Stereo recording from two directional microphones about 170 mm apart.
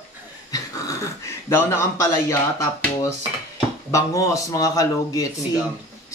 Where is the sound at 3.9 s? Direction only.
20° left (ahead or behind).